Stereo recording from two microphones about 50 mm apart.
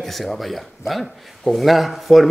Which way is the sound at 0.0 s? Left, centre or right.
Centre.